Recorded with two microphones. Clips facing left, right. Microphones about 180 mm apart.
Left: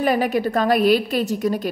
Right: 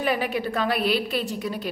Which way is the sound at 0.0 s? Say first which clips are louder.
Left 6 dB; 45° left (ahead or behind).